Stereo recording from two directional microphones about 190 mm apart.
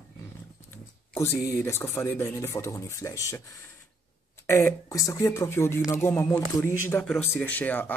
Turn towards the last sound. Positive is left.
turn(degrees=10)  # may be behind; listen again after turning